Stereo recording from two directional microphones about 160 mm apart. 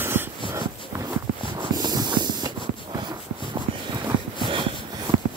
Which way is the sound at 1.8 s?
25° right (ahead or behind).